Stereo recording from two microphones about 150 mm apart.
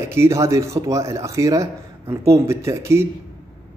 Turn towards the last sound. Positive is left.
turn(degrees=-20)  # may be behind; listen again after turning